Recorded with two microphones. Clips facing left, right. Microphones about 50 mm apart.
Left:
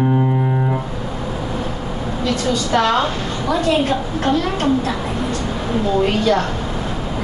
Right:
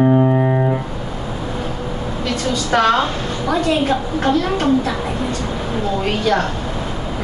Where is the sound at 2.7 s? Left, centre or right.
Right.